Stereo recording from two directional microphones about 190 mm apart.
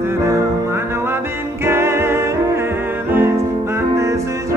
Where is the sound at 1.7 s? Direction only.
15° right (ahead or behind).